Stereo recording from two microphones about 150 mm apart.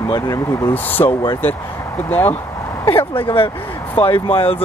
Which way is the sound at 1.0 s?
30° left (ahead or behind).